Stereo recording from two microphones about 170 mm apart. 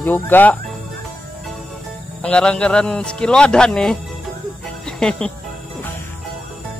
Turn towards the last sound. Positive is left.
turn(degrees=5)  # may be behind; listen again after turning